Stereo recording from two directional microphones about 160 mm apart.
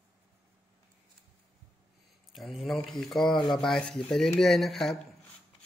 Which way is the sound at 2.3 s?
Centre (ahead or behind).